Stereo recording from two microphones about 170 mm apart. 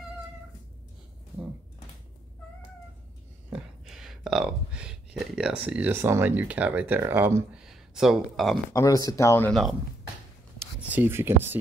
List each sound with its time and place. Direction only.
3.4 s speech: 5° right (ahead or behind)
7.6 s speech: 5° right (ahead or behind)
8.7 s speech: 20° left (ahead or behind)
9.5 s speech: centre (ahead or behind)
10.8 s speech: 10° right (ahead or behind)